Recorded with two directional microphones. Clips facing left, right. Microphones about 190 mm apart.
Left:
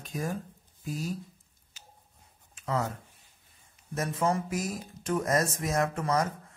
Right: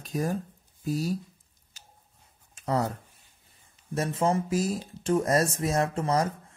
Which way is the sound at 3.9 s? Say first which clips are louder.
Right 3 dB; 30° right (ahead or behind).